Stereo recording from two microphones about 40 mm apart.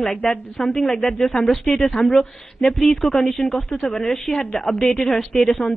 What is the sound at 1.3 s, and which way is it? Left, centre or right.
Speech, centre.